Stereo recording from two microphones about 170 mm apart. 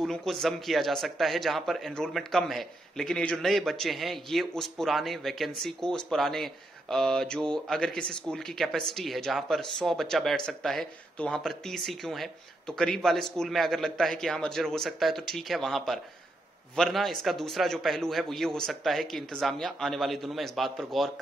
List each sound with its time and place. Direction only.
0.0 s speech: centre (ahead or behind)